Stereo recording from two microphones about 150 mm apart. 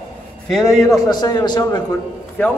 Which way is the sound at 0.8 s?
25° left (ahead or behind).